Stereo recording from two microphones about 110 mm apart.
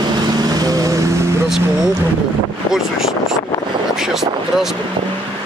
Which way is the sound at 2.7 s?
5° right (ahead or behind).